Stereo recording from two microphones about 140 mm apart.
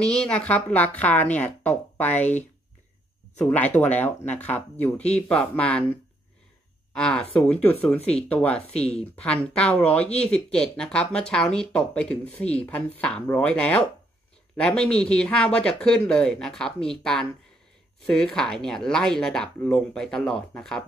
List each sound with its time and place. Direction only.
0.0 s speech: 5° left (ahead or behind)
8.0 s speech: 50° left (ahead or behind)
8.3 s speech: 10° left (ahead or behind)
8.6 s speech: 50° left (ahead or behind)
8.9 s speech: 10° left (ahead or behind)